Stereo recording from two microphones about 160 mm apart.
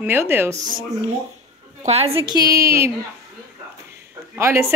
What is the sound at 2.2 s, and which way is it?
Speech, 25° right (ahead or behind).